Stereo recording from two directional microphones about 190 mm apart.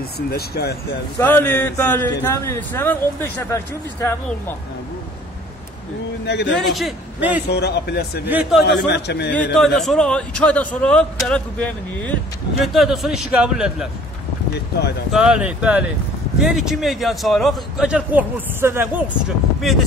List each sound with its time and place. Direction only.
0.3 s a man's voice: 55° left (ahead or behind)
1.2 s speech: 10° left (ahead or behind)
6.2 s a man's voice: 65° left (ahead or behind)
6.6 s a man's voice: centre (ahead or behind)
7.4 s a man's voice: 60° left (ahead or behind)
8.3 s a man's voice: 5° right (ahead or behind)
8.6 s a man's voice: 60° left (ahead or behind)
9.3 s a man's voice: 5° left (ahead or behind)
15.0 s a man's voice: 5° right (ahead or behind)